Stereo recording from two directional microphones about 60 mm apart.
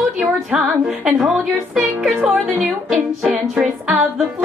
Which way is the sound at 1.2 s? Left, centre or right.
Centre.